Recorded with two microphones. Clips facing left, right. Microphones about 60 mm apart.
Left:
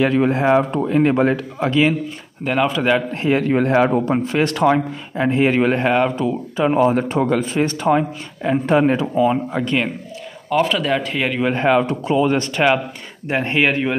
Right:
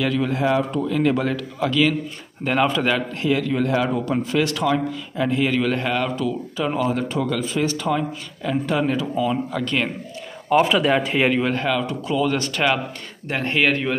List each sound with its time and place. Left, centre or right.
0.0 s speech: left
2.4 s speech: centre
3.1 s speech: left
10.5 s speech: centre
11.5 s speech: left; by 13.9 s centre